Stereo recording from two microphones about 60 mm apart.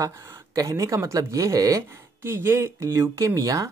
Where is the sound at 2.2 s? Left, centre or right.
Right.